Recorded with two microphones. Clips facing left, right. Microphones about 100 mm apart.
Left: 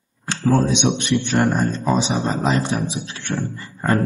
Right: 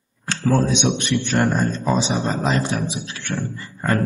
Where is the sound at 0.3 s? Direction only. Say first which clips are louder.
Left 1 dB; 20° left (ahead or behind).